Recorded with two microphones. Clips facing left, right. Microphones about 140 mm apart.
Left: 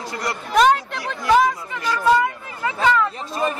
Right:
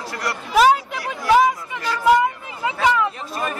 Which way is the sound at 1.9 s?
20° right (ahead or behind).